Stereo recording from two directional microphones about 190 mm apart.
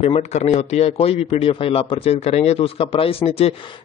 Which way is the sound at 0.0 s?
35° left (ahead or behind).